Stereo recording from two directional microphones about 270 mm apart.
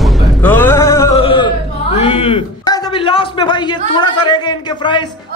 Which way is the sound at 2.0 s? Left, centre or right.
Left.